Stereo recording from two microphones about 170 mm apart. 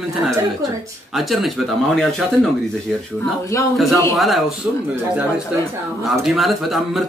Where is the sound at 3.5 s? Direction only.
15° left (ahead or behind).